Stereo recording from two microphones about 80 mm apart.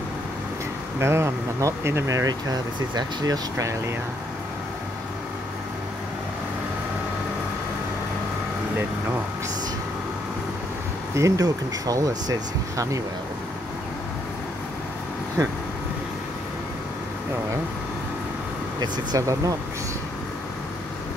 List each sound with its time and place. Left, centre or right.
0.9 s speech: right
3.5 s speech: right
11.1 s speech: right
18.8 s speech: right